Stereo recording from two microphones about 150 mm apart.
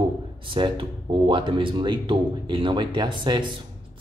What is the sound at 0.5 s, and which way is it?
Speech, 35° right (ahead or behind).